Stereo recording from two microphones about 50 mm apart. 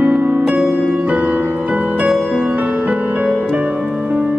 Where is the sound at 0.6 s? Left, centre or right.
Centre.